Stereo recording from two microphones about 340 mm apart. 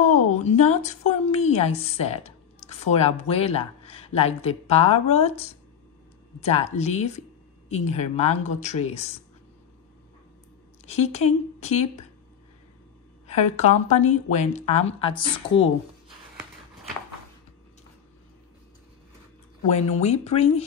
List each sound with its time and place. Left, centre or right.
0.3 s speech: centre
6.4 s speech: centre
10.9 s speech: centre
13.4 s speech: left
19.7 s speech: centre